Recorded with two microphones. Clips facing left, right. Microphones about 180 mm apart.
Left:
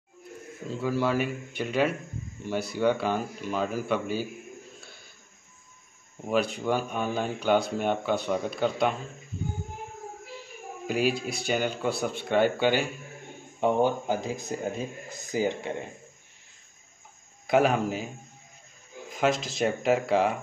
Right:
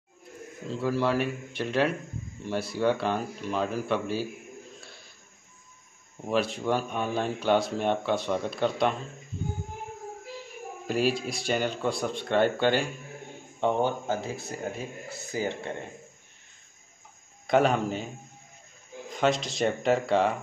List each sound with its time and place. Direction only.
0.7 s speech: centre (ahead or behind)
6.2 s speech: centre (ahead or behind)
10.9 s speech: centre (ahead or behind); by 15.7 s 15° left (ahead or behind)
17.5 s speech: 5° left (ahead or behind)
19.1 s speech: centre (ahead or behind)